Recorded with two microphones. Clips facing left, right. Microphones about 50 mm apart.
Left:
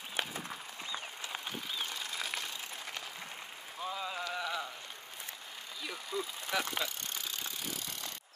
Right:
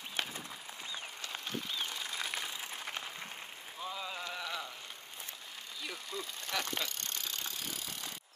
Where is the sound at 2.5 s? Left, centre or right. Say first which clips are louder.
Right 1 dB; right.